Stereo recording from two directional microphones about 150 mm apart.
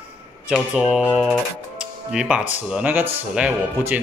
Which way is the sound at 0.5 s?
Centre (ahead or behind).